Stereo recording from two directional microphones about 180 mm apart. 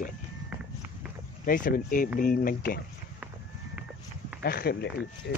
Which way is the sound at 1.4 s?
50° left (ahead or behind).